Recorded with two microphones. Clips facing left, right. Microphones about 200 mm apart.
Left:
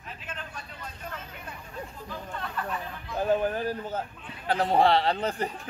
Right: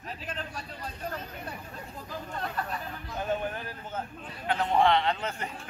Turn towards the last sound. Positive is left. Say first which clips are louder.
# left 3 dB
turn(degrees=35)  # may be behind; listen again after turning